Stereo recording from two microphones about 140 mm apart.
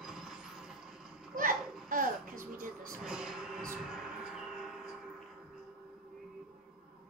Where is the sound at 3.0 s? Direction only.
5° right (ahead or behind).